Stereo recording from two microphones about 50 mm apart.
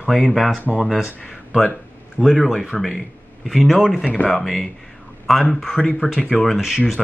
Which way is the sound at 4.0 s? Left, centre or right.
Left.